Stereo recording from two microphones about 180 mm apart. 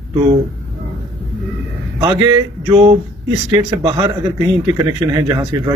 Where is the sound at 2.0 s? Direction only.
20° right (ahead or behind).